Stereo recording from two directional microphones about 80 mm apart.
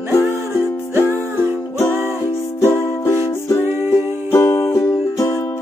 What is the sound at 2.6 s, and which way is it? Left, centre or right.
Music, left.